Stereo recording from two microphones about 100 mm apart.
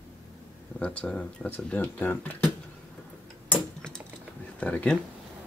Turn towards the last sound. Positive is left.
turn(degrees=15)  # may be behind; listen again after turning